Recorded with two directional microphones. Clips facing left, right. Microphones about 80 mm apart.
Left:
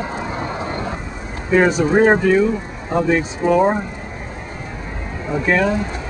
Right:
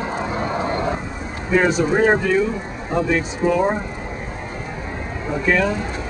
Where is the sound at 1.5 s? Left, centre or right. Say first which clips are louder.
Left 3 dB; centre.